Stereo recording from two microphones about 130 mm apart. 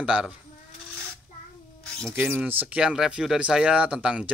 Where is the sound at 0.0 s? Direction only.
10° right (ahead or behind).